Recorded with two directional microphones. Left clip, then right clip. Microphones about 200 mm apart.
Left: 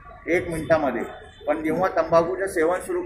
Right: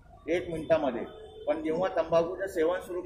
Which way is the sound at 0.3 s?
15° right (ahead or behind).